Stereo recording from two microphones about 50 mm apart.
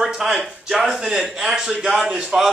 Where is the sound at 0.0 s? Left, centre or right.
Centre.